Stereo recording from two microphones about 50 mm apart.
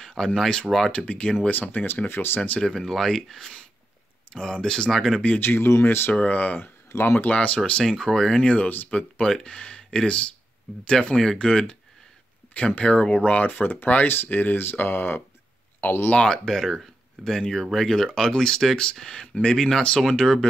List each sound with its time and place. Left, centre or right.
0.0 s speech: centre
1.5 s speech: left
2.6 s speech: centre
4.9 s speech: centre
5.4 s speech: left
6.1 s speech: left
6.6 s speech: left
7.2 s speech: left
7.8 s speech: centre
8.4 s speech: left
13.2 s speech: left
16.1 s speech: centre
16.5 s speech: centre